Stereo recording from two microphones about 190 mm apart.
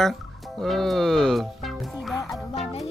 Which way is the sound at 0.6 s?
Centre (ahead or behind).